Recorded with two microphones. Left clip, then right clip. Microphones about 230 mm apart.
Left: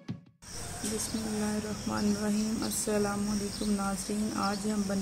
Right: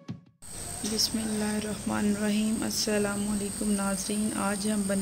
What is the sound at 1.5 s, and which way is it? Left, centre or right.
Speech, centre.